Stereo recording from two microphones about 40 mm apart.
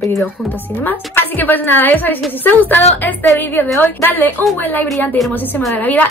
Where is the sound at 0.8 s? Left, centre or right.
Left.